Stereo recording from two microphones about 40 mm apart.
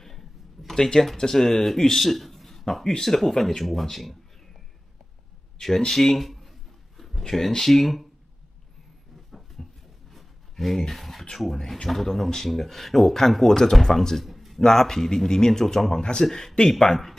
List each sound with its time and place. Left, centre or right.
0.0 s a sound: centre
0.7 s speech: centre
5.8 s speech: centre
9.6 s a sound: centre
10.5 s speech: centre
14.6 s speech: centre